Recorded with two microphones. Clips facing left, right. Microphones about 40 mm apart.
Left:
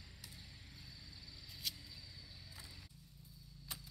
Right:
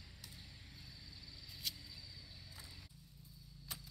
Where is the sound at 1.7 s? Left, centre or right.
Centre.